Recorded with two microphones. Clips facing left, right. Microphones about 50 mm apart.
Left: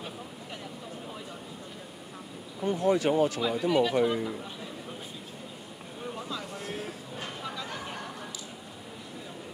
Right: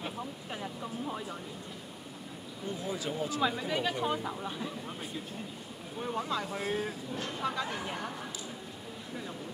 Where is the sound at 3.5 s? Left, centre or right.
Left.